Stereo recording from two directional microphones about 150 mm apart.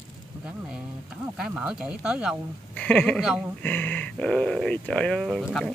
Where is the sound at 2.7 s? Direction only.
10° left (ahead or behind).